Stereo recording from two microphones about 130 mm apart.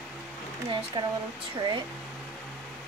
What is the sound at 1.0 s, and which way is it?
Speech, 40° right (ahead or behind).